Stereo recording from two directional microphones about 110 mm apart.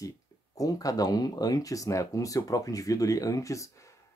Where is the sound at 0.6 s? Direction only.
35° left (ahead or behind).